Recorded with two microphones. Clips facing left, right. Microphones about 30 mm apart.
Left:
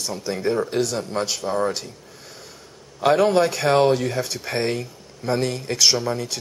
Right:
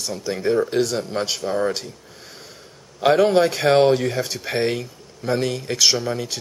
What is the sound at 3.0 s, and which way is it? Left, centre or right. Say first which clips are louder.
Speech: right 1 dB; centre.